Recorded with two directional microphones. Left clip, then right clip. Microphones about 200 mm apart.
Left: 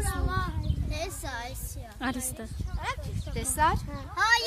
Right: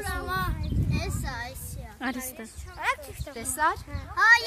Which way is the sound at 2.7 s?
40° right (ahead or behind).